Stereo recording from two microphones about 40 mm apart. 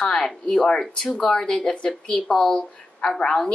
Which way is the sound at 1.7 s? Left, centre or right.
Left.